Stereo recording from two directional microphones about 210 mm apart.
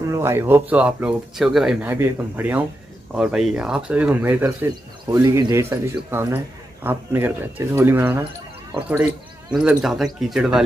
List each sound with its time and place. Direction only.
0.1 s speech: 15° right (ahead or behind)
9.5 s speech: 5° right (ahead or behind)